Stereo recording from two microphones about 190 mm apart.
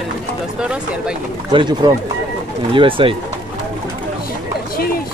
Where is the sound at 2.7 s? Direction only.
25° right (ahead or behind).